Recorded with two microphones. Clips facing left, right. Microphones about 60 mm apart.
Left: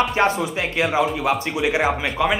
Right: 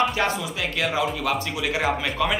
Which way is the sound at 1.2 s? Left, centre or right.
Left.